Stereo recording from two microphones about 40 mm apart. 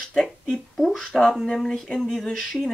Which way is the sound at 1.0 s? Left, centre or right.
Centre.